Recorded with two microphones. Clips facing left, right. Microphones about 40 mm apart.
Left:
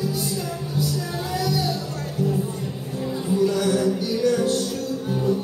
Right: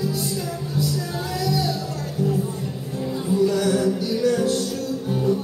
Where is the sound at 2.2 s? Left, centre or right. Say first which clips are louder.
Right 1 dB; left.